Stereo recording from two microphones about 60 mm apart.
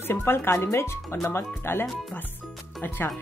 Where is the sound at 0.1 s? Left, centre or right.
Left.